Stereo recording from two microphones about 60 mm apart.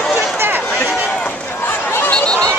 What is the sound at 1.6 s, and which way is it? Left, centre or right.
Chatter, left.